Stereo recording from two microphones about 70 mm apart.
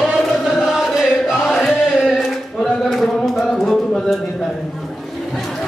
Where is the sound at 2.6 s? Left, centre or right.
Centre.